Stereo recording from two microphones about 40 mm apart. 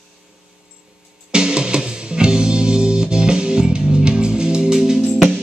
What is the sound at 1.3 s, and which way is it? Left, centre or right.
Music, right.